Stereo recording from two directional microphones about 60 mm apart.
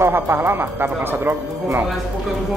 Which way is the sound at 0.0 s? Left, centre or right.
Right.